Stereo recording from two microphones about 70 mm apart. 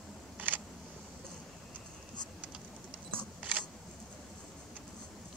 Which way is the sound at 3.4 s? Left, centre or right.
Centre.